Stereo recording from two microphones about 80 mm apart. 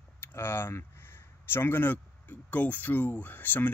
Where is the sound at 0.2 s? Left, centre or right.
Left.